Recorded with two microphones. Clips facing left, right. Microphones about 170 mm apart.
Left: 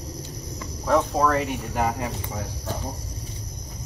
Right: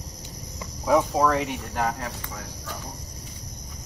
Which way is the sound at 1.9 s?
15° left (ahead or behind).